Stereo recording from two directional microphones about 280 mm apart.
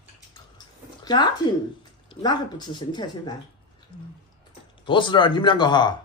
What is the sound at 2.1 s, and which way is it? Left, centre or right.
Speech, centre.